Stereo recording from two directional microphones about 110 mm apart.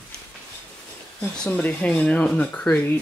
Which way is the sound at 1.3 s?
10° left (ahead or behind).